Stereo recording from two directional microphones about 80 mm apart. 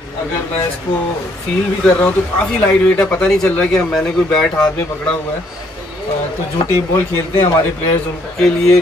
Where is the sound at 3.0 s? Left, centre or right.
Centre.